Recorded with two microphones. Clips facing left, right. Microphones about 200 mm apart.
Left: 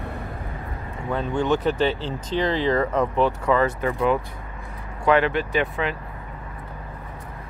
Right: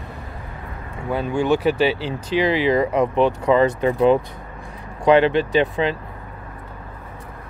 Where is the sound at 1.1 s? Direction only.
10° right (ahead or behind); by 6.0 s 30° right (ahead or behind).